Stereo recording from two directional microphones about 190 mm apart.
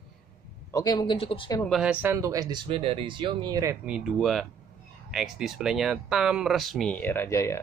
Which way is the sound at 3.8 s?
5° right (ahead or behind).